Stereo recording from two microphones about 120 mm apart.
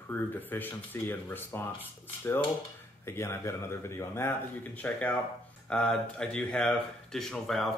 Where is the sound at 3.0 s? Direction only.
20° left (ahead or behind).